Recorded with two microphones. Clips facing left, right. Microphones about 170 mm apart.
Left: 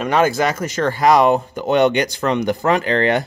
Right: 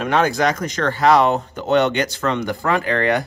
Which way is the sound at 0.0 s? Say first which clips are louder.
Left 1 dB; 5° left (ahead or behind).